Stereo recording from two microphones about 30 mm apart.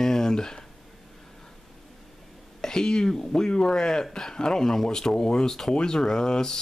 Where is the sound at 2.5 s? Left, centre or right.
Centre.